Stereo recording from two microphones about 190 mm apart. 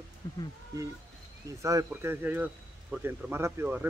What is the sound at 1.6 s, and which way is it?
Speech, 15° right (ahead or behind).